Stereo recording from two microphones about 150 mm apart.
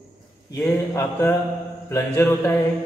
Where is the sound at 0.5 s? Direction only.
15° left (ahead or behind).